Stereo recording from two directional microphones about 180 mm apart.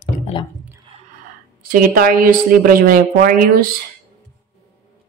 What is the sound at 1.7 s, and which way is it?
A woman's voice, 50° right (ahead or behind).